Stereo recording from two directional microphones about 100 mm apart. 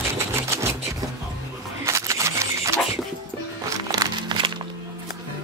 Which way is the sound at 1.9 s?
30° right (ahead or behind).